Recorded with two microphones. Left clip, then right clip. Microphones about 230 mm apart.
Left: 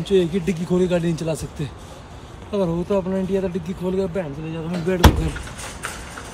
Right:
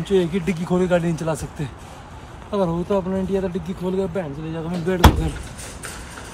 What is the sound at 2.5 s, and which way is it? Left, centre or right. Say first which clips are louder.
Speech: even; centre.